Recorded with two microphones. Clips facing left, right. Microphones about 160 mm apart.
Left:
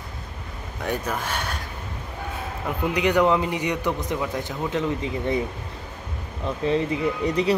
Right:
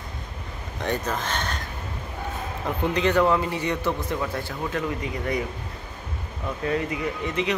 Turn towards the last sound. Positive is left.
turn(degrees=35)  # may be behind; listen again after turning